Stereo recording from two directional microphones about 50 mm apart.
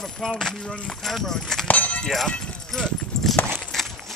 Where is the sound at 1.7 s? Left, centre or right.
Left.